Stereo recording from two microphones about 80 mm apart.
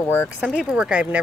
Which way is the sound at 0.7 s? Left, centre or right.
Centre.